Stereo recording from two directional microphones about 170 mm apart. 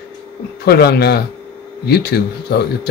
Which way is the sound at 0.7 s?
70° left (ahead or behind).